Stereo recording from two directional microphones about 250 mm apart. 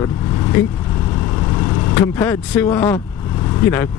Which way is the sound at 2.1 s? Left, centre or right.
Centre.